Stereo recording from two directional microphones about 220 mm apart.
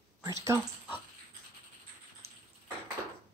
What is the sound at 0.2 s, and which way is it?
Speech, 15° right (ahead or behind).